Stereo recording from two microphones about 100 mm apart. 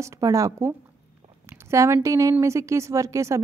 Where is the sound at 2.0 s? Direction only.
35° right (ahead or behind).